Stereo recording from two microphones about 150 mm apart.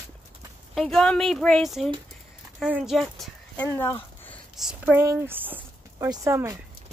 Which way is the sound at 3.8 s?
15° left (ahead or behind).